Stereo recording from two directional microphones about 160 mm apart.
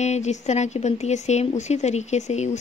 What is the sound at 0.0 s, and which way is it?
Speech, 45° left (ahead or behind).